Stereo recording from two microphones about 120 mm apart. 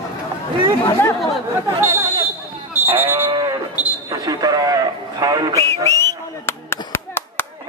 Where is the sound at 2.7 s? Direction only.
15° right (ahead or behind).